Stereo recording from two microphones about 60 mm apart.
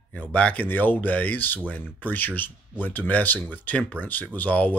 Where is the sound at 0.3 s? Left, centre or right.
Left.